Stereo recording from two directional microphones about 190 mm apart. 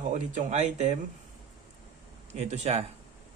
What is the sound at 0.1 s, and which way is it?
Speech, 40° right (ahead or behind).